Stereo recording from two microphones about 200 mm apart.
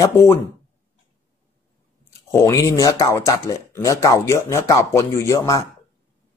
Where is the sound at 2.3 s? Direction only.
15° left (ahead or behind).